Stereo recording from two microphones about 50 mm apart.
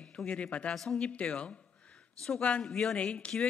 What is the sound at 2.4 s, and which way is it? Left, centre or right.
Speech, left.